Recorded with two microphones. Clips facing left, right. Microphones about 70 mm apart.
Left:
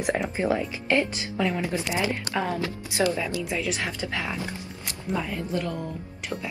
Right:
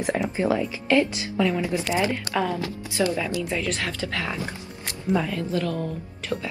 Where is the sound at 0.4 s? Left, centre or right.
Left.